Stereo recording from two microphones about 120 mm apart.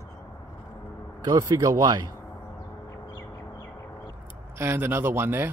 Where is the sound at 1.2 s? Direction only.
30° right (ahead or behind).